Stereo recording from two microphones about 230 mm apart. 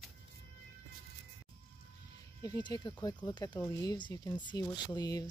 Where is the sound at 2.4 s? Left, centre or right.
Centre.